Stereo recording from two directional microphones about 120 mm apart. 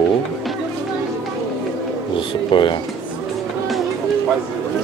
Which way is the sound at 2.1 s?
40° left (ahead or behind).